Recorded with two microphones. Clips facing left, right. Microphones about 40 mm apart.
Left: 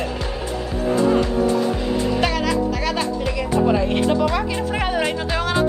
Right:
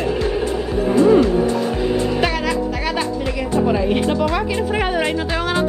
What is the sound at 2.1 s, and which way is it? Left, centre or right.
Speech, centre.